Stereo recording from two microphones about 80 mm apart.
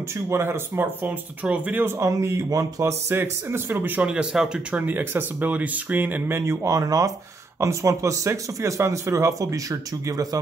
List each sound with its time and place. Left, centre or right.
0.3 s speech: right
2.0 s speech: right
4.1 s speech: centre
4.8 s speech: right